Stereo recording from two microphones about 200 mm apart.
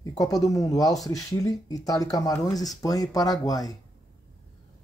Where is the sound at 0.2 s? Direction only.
15° left (ahead or behind).